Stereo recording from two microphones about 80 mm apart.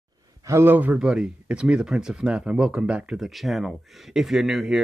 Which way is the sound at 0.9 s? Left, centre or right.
Centre.